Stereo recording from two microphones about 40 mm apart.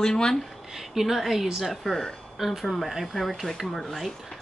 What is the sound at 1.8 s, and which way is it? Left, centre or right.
Speech, centre.